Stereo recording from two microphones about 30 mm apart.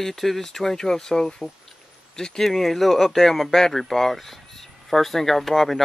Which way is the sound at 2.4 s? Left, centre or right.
Centre.